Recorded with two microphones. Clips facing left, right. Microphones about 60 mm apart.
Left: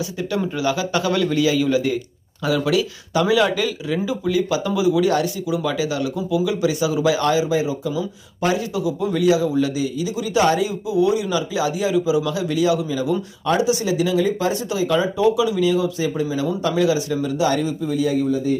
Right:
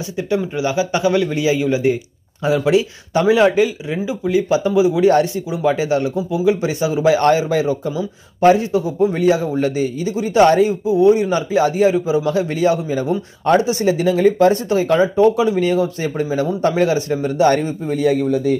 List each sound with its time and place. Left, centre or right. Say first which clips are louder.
0.6 s a man's voice: right 1 dB; right
7.9 s a man's voice: right 1 dB; right